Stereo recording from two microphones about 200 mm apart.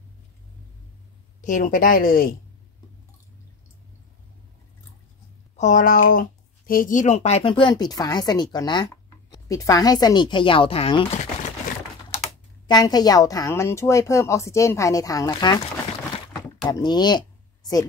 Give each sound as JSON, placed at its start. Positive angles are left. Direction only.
{"t": 1.4, "sound": "speech", "side_deg": 40}
{"t": 5.6, "sound": "speech", "side_deg": 40}
{"t": 12.6, "sound": "a woman's voice", "side_deg": 20}
{"t": 16.6, "sound": "speech", "side_deg": 20}